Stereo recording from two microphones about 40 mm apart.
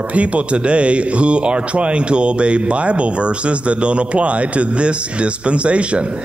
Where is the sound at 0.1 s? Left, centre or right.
Right.